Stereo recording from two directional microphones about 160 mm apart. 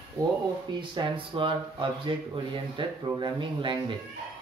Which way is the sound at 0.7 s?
30° right (ahead or behind).